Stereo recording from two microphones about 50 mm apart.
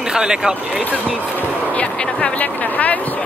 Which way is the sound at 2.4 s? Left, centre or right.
Left.